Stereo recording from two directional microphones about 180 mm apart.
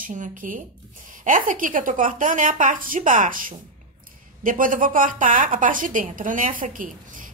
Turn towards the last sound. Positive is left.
turn(degrees=-50)  # may be behind; listen again after turning